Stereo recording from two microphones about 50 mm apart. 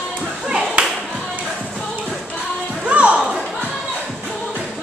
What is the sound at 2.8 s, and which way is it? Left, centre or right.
Music, right.